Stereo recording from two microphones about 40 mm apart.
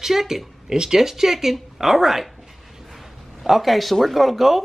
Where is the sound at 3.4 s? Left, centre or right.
Centre.